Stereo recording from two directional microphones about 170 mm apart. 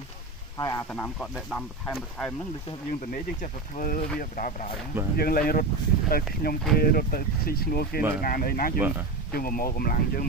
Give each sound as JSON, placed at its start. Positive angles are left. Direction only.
{"t": 0.6, "sound": "speech", "side_deg": 20}
{"t": 0.8, "sound": "speech", "side_deg": 5}
{"t": 2.9, "sound": "speech", "side_deg": 50}
{"t": 5.1, "sound": "speech", "side_deg": 65}
{"t": 8.7, "sound": "speech", "side_deg": -10}
{"t": 9.3, "sound": "speech", "side_deg": 60}